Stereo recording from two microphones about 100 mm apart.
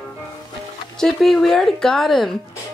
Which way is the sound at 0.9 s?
5° left (ahead or behind).